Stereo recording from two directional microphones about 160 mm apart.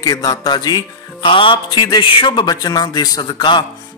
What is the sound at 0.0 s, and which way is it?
A man's voice, 25° left (ahead or behind).